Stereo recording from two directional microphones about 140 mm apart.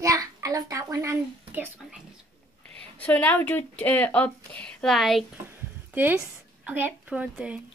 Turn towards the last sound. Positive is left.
turn(degrees=-10)  # may be behind; listen again after turning